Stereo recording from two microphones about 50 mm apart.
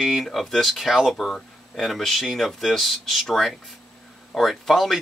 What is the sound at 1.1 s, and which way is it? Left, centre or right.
Speech, centre.